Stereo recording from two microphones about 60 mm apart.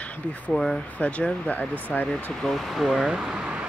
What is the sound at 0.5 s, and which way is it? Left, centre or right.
Speech, centre.